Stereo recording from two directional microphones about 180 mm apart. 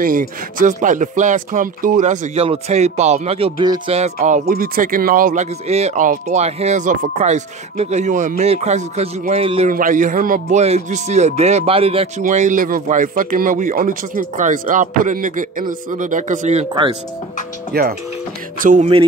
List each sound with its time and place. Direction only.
0.0 s speech: 50° right (ahead or behind); by 3.9 s 25° right (ahead or behind)
3.9 s speech: 40° right (ahead or behind)
4.5 s speech: 50° right (ahead or behind); by 9.7 s 35° right (ahead or behind)
9.7 s speech: 50° right (ahead or behind); by 12.1 s 30° right (ahead or behind)
12.2 s speech: 45° right (ahead or behind)
17.7 s speech: 60° right (ahead or behind)
18.6 s speech: 45° right (ahead or behind)